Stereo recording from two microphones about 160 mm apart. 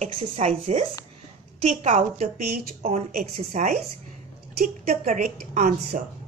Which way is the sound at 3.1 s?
50° right (ahead or behind).